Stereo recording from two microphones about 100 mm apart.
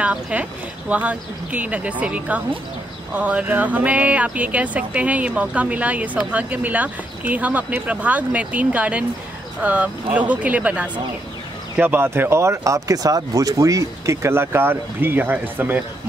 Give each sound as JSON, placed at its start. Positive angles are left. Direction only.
{"t": 0.0, "sound": "speech", "side_deg": -15}